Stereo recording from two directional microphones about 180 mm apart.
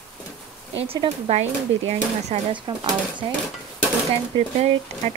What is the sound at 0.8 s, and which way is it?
Speech, 35° right (ahead or behind).